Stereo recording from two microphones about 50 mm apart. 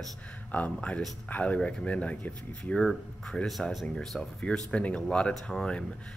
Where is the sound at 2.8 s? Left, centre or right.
Centre.